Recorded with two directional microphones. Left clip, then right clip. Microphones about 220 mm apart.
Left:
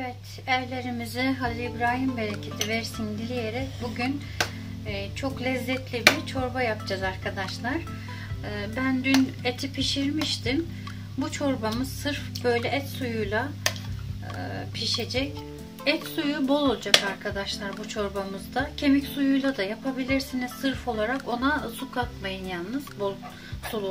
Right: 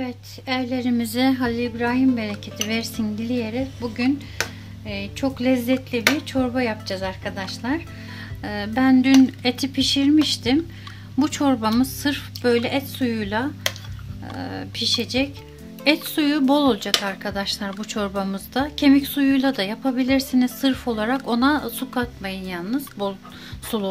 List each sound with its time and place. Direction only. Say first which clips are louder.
0.0 s a woman's voice: right 3 dB; 55° right (ahead or behind)
3.4 s a woman's voice: right 4 dB; 50° right (ahead or behind)